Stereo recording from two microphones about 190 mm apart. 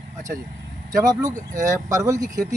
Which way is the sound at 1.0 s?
20° right (ahead or behind).